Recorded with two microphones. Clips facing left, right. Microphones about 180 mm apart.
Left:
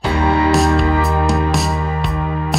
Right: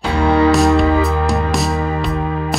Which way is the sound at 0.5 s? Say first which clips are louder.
Right 2 dB; centre (ahead or behind).